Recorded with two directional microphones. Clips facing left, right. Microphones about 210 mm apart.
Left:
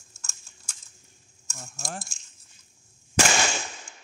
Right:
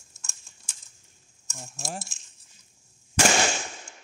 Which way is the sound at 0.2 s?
Centre (ahead or behind).